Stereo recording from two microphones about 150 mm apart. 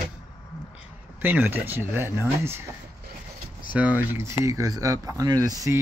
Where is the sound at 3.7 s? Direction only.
10° right (ahead or behind).